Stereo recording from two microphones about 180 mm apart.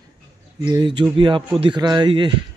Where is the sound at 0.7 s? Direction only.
25° right (ahead or behind).